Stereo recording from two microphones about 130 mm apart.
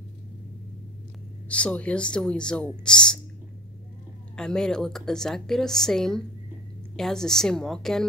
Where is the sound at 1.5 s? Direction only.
10° left (ahead or behind).